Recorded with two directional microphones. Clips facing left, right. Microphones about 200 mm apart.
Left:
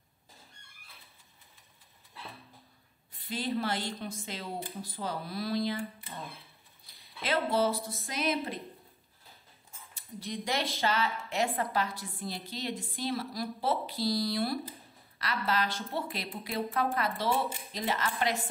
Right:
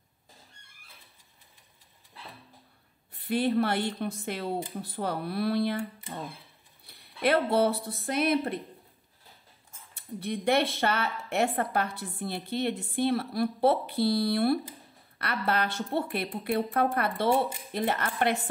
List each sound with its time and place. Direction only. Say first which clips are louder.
3.1 s a woman's voice: right 7 dB; 60° right (ahead or behind)
6.9 s speech: right 7 dB; 60° right (ahead or behind)
9.9 s a woman's voice: right 5 dB; 60° right (ahead or behind)